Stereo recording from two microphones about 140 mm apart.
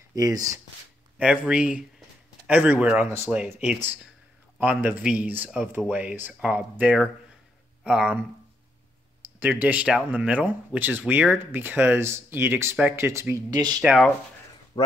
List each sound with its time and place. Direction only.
0.1 s speech: 25° right (ahead or behind)
1.1 s speech: 10° right (ahead or behind)
9.2 s speech: 15° right (ahead or behind); by 13.8 s 30° right (ahead or behind)